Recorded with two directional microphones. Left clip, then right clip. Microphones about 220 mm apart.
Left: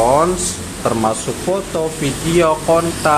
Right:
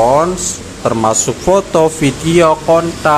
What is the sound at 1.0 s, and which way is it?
A man's voice, 25° right (ahead or behind).